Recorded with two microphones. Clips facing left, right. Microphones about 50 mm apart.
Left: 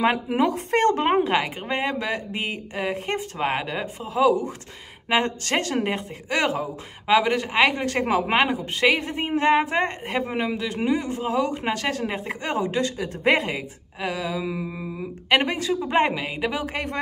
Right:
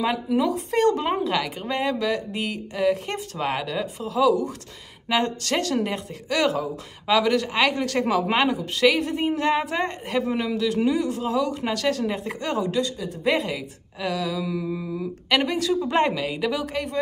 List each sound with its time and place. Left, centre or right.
0.0 s speech: left
12.9 s speech: left
13.9 s speech: left